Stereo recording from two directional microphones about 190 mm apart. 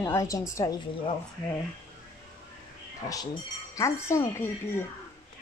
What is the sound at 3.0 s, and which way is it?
Speech, 20° left (ahead or behind).